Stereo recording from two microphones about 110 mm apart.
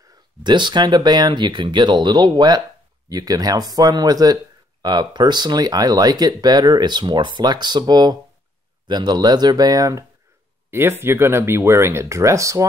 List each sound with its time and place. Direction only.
0.4 s speech: 45° right (ahead or behind)
10.7 s speech: 20° right (ahead or behind)